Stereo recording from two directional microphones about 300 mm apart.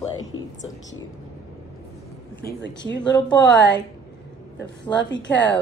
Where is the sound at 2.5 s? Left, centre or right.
Left.